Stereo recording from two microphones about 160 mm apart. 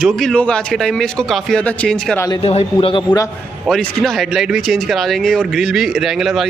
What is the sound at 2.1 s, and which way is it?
Speech, 20° left (ahead or behind).